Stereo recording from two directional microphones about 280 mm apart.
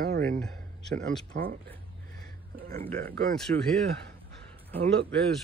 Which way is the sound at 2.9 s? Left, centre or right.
Right.